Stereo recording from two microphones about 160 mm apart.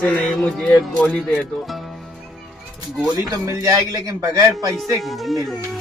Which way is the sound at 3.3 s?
20° right (ahead or behind).